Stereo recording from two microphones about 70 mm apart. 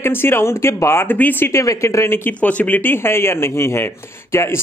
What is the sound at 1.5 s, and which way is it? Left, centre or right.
Speech, left.